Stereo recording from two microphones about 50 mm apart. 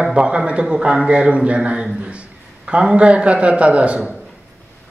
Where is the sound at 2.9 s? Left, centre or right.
Right.